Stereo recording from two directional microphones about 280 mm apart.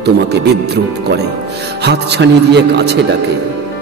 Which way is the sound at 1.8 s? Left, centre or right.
Right.